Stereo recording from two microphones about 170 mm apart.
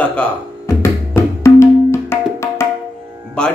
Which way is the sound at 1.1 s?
15° left (ahead or behind).